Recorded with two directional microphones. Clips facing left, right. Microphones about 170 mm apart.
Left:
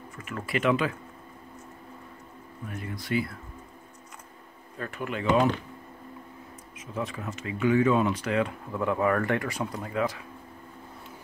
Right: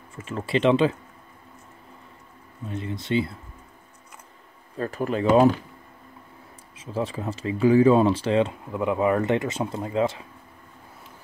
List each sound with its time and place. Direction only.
0.1 s speech: 30° right (ahead or behind)
2.6 s speech: 25° right (ahead or behind)
4.7 s speech: 35° right (ahead or behind)
6.7 s speech: 30° right (ahead or behind)